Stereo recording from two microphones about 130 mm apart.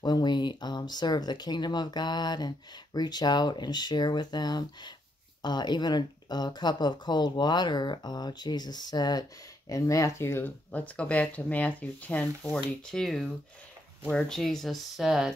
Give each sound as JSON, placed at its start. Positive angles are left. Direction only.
{"t": 0.0, "sound": "speech", "side_deg": 35}